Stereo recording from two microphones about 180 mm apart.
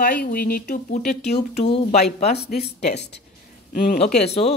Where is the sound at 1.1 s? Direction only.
35° left (ahead or behind).